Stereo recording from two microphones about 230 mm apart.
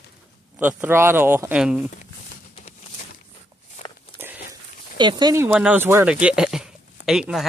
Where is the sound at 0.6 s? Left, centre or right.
Centre.